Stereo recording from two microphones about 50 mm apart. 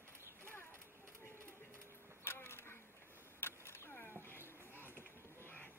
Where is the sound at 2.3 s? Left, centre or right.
Left.